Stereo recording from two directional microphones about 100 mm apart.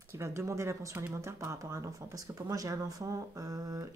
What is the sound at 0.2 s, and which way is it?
Speech, 30° right (ahead or behind).